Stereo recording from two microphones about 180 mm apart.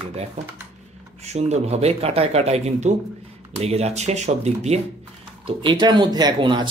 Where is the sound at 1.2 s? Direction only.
35° right (ahead or behind).